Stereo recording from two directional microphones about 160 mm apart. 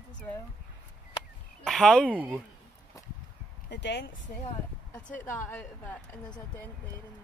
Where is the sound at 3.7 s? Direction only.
90° left.